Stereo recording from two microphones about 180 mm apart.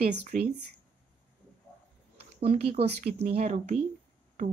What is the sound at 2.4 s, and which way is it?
Speech, 35° right (ahead or behind).